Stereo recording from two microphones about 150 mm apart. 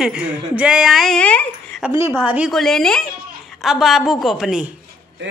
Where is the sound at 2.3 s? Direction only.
5° right (ahead or behind).